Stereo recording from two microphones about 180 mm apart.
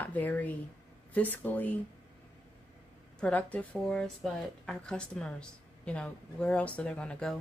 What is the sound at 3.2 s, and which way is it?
Speech, 10° left (ahead or behind).